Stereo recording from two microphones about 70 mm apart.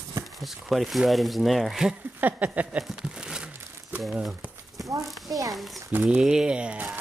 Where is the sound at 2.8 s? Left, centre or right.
Centre.